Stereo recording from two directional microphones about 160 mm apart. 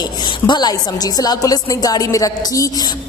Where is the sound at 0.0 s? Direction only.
25° left (ahead or behind).